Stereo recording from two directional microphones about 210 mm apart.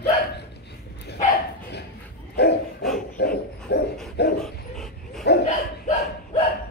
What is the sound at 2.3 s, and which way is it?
Dog, 50° left (ahead or behind).